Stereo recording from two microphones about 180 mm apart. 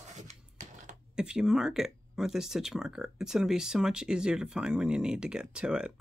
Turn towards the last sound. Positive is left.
turn(degrees=-5)  # may be behind; listen again after turning